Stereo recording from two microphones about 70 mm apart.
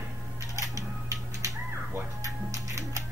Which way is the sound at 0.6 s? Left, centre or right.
Right.